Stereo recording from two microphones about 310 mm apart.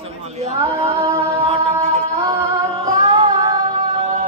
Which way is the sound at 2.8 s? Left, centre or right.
Centre.